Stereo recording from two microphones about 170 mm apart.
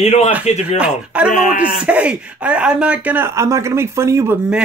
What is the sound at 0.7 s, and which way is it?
Speech, 5° right (ahead or behind).